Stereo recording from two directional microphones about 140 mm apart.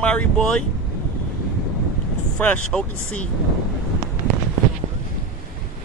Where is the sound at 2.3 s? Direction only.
10° left (ahead or behind).